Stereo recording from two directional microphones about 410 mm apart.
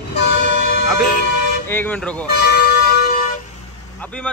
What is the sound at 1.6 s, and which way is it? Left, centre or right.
Speech, centre.